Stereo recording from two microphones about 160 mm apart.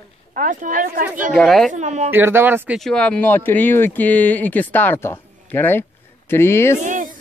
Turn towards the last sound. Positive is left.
turn(degrees=-50)  # may be behind; listen again after turning